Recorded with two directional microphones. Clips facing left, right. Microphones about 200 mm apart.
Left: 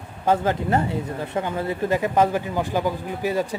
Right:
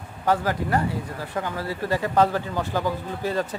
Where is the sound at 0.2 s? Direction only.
20° left (ahead or behind).